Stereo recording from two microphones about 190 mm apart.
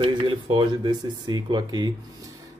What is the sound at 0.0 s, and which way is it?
Speech, 25° right (ahead or behind).